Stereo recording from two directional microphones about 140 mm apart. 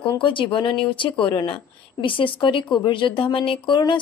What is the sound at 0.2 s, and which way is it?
Speech, 35° left (ahead or behind).